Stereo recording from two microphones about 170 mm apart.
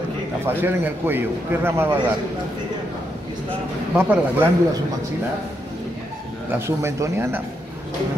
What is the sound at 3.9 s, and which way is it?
Speech, 10° right (ahead or behind).